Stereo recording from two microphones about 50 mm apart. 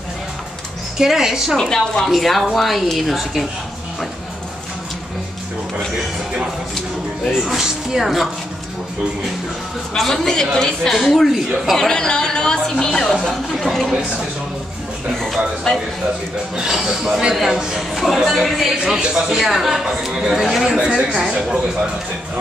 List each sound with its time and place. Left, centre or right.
0.9 s speech: centre
1.6 s a woman's voice: centre
2.0 s speech: centre
7.2 s speech: centre
9.9 s a woman's voice: centre
11.2 s speech: centre
11.7 s a woman's voice: centre
15.1 s a sound: centre
16.5 s speech: centre
18.9 s a woman's voice: centre